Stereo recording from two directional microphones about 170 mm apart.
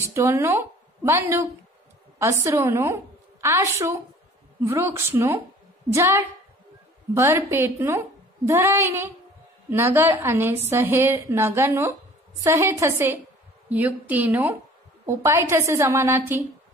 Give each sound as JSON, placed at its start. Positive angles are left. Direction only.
{"t": 0.1, "sound": "a woman's voice", "side_deg": -15}